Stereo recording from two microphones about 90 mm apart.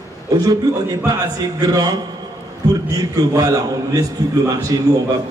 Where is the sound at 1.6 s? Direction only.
45° right (ahead or behind).